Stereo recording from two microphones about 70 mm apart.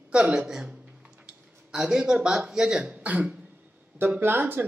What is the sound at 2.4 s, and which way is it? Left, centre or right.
Speech, centre.